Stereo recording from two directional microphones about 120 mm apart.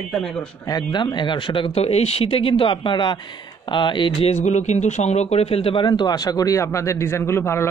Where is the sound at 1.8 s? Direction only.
60° left (ahead or behind); by 4.3 s 40° left (ahead or behind).